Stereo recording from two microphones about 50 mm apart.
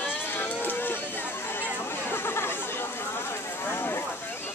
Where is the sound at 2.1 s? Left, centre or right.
Left.